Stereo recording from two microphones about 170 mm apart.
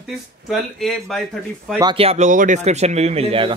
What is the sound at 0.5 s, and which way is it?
Speech, centre (ahead or behind).